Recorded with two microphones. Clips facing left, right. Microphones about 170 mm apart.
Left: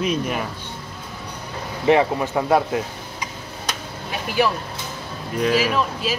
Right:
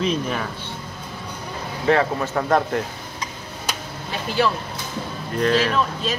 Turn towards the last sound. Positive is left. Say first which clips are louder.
# even
turn(degrees=5)  # may be behind; listen again after turning